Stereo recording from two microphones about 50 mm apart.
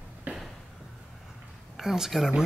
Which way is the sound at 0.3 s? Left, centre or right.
Right.